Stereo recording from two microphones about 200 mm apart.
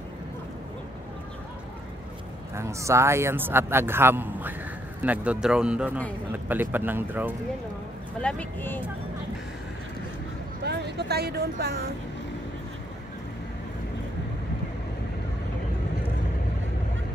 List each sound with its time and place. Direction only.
2.5 s a man's voice: 15° right (ahead or behind)
8.2 s speech: 5° left (ahead or behind)
10.6 s speech: 55° right (ahead or behind)